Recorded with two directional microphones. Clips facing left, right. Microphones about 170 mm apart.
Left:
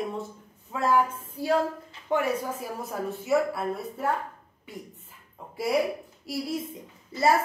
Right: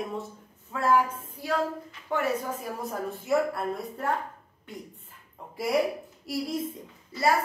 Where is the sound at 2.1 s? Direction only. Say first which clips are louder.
Left 3 dB; 20° left (ahead or behind).